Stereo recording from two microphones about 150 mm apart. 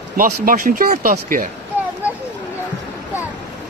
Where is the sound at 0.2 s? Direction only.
65° right (ahead or behind).